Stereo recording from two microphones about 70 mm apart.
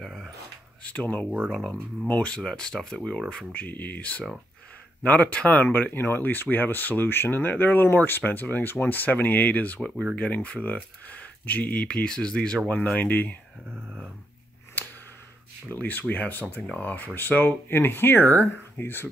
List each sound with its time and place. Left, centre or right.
0.0 s a sound: centre
0.8 s speech: left
1.5 s speech: centre
2.0 s speech: centre
3.5 s speech: left
13.7 s a sound: centre
15.7 s speech: left